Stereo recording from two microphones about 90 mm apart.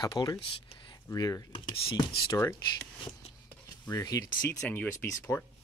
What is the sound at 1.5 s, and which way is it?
Speech, 90° left.